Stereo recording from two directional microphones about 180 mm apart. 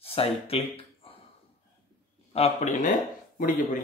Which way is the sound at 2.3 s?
35° left (ahead or behind).